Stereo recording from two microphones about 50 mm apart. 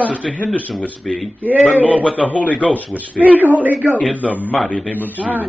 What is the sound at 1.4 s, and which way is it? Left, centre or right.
Speech, right.